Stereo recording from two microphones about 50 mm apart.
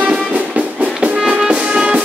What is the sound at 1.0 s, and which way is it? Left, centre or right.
Music, right.